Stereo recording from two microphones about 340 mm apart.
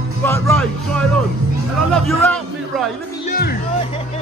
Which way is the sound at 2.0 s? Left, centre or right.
Centre.